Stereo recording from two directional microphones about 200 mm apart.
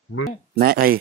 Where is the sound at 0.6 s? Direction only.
50° right (ahead or behind).